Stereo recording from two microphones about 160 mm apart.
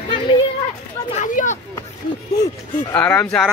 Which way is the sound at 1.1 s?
50° left (ahead or behind).